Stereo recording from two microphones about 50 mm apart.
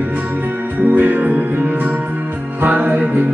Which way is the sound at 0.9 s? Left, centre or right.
Right.